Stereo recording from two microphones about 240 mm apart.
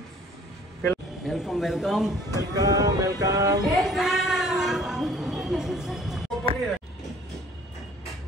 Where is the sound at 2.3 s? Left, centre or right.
Centre.